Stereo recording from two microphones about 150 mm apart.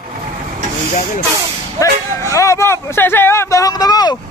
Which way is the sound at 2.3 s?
20° left (ahead or behind).